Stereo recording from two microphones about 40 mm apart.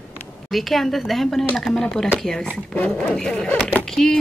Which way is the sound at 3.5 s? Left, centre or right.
Left.